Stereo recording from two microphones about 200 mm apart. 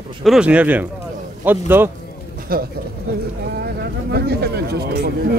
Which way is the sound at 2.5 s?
50° right (ahead or behind).